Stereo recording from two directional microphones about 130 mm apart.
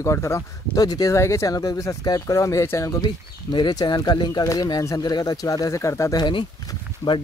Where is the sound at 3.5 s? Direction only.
35° left (ahead or behind).